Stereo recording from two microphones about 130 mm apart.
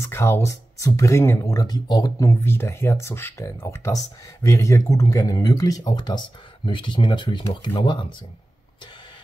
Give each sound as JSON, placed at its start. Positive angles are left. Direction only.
{"t": 0.0, "sound": "speech", "side_deg": 20}